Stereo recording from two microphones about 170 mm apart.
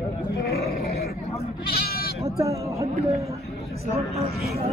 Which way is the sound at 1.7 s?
65° left (ahead or behind).